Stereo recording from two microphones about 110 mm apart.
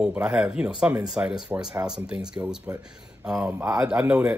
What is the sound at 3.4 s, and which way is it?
Speech, 20° right (ahead or behind).